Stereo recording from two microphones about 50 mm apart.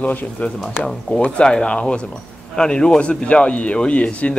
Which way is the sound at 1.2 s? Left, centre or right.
Centre.